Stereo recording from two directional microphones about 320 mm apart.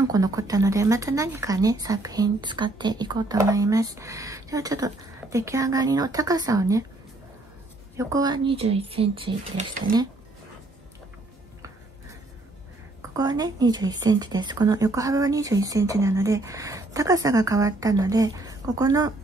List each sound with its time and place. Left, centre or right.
0.1 s speech: centre
8.0 s speech: centre
13.1 s speech: centre